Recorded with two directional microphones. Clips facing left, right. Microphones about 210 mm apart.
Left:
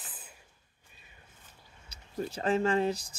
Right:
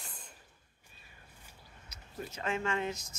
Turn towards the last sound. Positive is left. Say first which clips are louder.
# left 7 dB
turn(degrees=35)  # may be behind; listen again after turning